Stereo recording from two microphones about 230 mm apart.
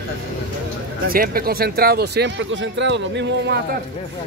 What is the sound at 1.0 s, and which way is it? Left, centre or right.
Speech, right.